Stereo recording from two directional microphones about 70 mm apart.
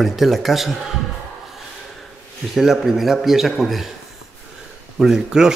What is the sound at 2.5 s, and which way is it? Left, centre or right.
Speech, centre.